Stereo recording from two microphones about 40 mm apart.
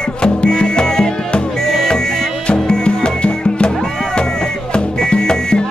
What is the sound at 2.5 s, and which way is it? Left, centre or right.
Music, left.